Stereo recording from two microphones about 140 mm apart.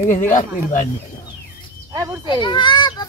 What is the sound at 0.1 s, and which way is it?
Speech, 65° left (ahead or behind).